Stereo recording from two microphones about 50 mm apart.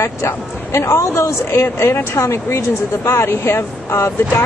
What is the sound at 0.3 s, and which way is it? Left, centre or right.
A woman's voice, left.